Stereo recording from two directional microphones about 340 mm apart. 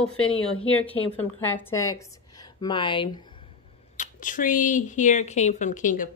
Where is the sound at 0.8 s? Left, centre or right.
Centre.